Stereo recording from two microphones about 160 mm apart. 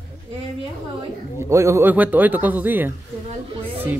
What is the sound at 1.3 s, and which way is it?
Speech, 20° right (ahead or behind).